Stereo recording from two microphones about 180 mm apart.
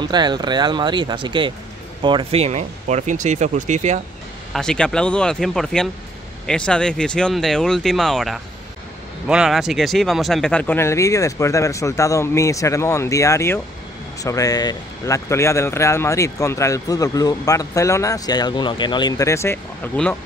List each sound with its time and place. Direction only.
0.0 s speech: 25° right (ahead or behind); by 4.0 s 40° right (ahead or behind)
4.6 s speech: 5° left (ahead or behind)